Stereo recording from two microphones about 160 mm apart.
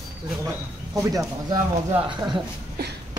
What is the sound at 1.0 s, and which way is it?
Speech, 20° right (ahead or behind).